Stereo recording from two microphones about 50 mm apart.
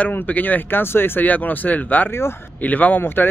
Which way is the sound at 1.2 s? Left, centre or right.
Left.